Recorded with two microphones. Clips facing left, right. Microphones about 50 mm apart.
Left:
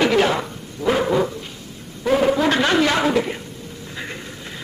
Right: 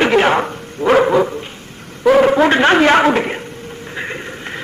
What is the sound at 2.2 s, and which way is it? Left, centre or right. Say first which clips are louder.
A woman's voice: right 6 dB; right.